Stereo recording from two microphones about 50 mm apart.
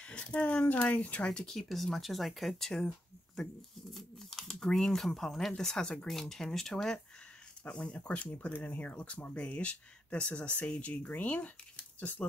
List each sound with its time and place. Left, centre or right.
0.0 s a sound: left
0.7 s speech: left
1.2 s speech: centre
3.9 s speech: centre
7.6 s speech: left